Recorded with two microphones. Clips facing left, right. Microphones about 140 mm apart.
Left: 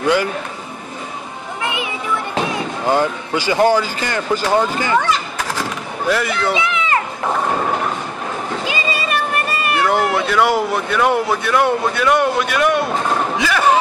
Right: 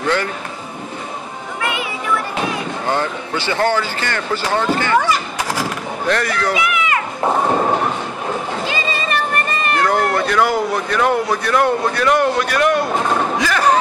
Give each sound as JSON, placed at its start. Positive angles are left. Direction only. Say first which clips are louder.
{"t": 0.0, "sound": "speech", "louder": "left 3 dB", "side_deg": 10}
{"t": 1.6, "sound": "music", "louder": "right 1 dB", "side_deg": 20}
{"t": 2.9, "sound": "speech", "louder": "left 4 dB", "side_deg": 10}
{"t": 4.9, "sound": "children playing", "louder": "right 1 dB", "side_deg": -5}
{"t": 6.0, "sound": "speech", "louder": "left 1 dB", "side_deg": 5}
{"t": 6.5, "sound": "a sound", "louder": "even", "side_deg": 25}
{"t": 8.6, "sound": "speech", "louder": "even", "side_deg": 10}
{"t": 13.4, "sound": "a sound", "louder": "left 1 dB", "side_deg": 5}